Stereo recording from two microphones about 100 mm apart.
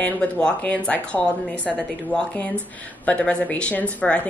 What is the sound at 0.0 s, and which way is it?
A woman's voice, 15° left (ahead or behind).